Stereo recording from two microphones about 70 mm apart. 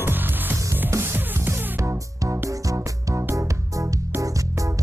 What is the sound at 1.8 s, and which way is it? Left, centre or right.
Music, right.